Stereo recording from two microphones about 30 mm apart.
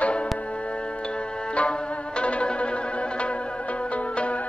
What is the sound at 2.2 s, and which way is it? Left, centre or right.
Music, left.